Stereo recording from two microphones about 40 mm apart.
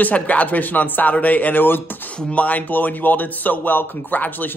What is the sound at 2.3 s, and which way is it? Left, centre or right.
Speech, left.